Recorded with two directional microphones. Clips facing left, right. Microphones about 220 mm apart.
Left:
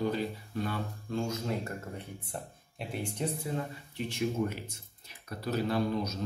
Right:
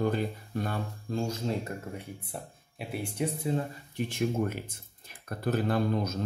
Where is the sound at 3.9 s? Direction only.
50° right (ahead or behind).